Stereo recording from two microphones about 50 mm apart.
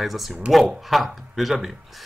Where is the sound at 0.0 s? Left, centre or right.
Centre.